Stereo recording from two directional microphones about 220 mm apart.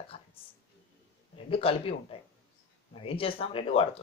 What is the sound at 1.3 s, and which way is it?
Speech, 25° left (ahead or behind).